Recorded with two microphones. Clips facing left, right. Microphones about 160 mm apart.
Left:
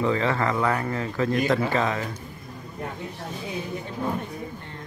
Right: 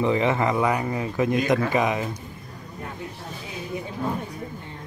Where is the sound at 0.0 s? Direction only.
20° right (ahead or behind).